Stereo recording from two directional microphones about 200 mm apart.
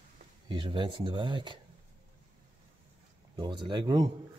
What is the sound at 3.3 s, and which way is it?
Speech, 20° right (ahead or behind).